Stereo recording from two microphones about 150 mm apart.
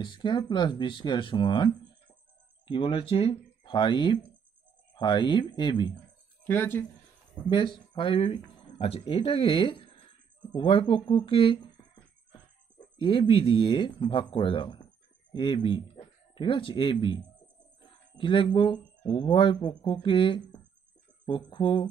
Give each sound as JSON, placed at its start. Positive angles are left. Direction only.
{"t": 0.0, "sound": "speech", "side_deg": 30}
{"t": 6.4, "sound": "speech", "side_deg": 15}
{"t": 7.4, "sound": "speech", "side_deg": 30}
{"t": 12.9, "sound": "speech", "side_deg": 35}